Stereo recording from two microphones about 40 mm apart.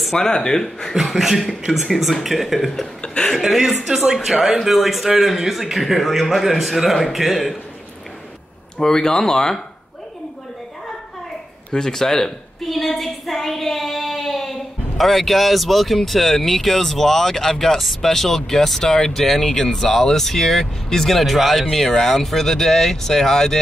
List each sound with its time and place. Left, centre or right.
0.1 s speech: centre
0.9 s speech: centre
8.7 s speech: centre
11.7 s speech: centre